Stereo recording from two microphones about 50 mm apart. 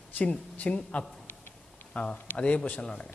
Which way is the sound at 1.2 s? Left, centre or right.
Left.